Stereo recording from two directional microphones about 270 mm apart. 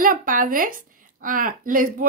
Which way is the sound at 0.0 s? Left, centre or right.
Right.